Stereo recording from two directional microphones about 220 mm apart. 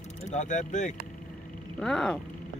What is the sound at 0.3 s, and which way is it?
Speech, 35° left (ahead or behind).